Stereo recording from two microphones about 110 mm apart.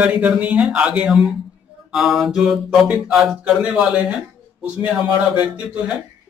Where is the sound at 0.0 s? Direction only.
15° right (ahead or behind).